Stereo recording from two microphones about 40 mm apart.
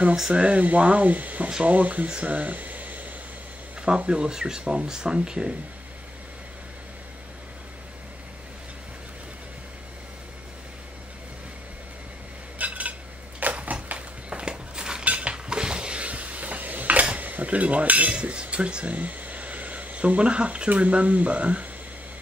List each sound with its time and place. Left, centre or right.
0.3 s speech: right
2.0 s speech: right
2.3 s a sound: right
3.8 s speech: right
12.5 s dishes: right
13.4 s a sound: right
13.8 s dishes: right
15.0 s a sound: right
17.0 s cutlery: right